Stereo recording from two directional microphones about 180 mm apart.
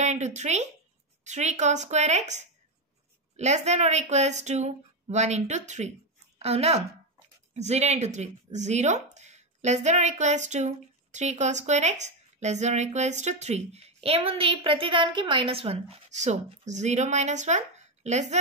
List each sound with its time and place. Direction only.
0.0 s speech: 40° right (ahead or behind)